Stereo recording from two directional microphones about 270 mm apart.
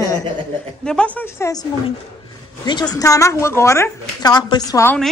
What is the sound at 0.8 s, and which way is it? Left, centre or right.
A woman's voice, centre.